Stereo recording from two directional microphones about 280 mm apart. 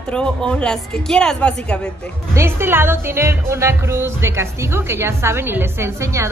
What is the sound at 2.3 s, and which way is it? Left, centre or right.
Speech, centre.